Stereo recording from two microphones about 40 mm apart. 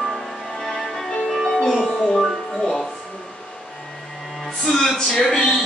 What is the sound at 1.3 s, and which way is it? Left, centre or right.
Music, centre.